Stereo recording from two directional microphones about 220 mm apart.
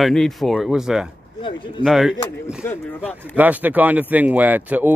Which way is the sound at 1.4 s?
20° left (ahead or behind).